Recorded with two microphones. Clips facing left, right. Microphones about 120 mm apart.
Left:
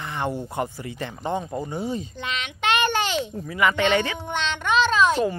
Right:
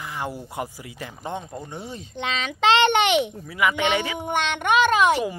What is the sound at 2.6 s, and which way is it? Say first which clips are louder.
Speech: right 5 dB; 90° right.